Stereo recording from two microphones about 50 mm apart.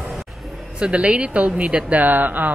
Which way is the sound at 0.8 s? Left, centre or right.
Right.